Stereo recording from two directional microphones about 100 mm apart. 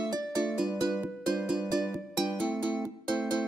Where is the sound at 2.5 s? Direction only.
15° right (ahead or behind).